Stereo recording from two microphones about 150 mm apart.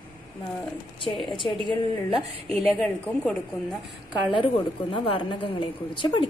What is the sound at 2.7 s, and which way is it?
Speech, 5° left (ahead or behind).